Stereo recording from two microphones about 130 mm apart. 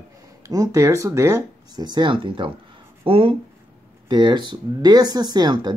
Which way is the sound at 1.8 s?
35° right (ahead or behind).